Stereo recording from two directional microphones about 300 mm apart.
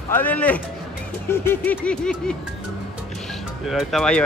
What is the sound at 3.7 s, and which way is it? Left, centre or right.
Speech, centre.